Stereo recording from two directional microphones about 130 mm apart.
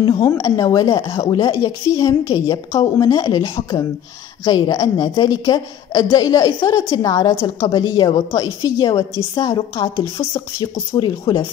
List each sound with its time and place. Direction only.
0.0 s a woman's voice: 30° left (ahead or behind)
4.5 s a woman's voice: 30° left (ahead or behind)